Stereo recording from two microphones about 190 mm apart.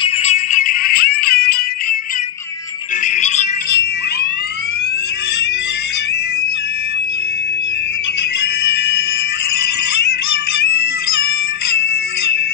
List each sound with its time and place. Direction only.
0.0 s music: 35° left (ahead or behind); by 2.0 s 55° left (ahead or behind)
3.2 s music: 35° left (ahead or behind)
8.6 s music: 60° left (ahead or behind)